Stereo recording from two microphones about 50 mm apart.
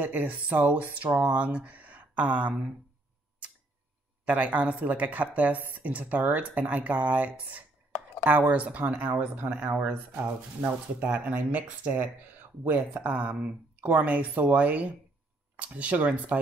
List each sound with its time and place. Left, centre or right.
0.0 s speech: right
4.3 s speech: right